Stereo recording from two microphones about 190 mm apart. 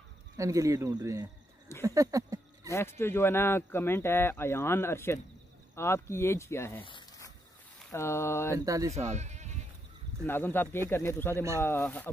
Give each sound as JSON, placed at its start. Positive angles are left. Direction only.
{"t": 0.4, "sound": "speech", "side_deg": -15}
{"t": 1.9, "sound": "a sound", "side_deg": -15}
{"t": 2.7, "sound": "speech", "side_deg": 15}
{"t": 6.8, "sound": "zipper", "side_deg": 25}
{"t": 7.9, "sound": "speech", "side_deg": 15}
{"t": 8.5, "sound": "speech", "side_deg": -15}
{"t": 9.1, "sound": "bleat", "side_deg": -35}
{"t": 10.2, "sound": "speech", "side_deg": 10}